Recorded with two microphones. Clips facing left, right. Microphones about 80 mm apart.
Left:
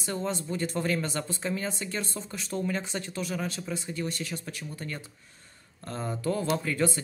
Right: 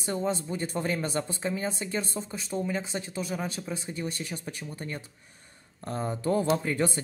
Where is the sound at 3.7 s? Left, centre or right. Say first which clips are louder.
Left 1 dB; right.